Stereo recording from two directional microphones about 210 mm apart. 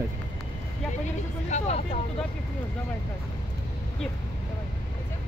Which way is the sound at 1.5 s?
30° left (ahead or behind).